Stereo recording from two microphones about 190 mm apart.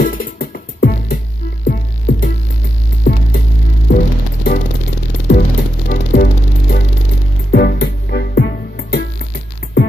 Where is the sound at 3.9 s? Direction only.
45° left (ahead or behind).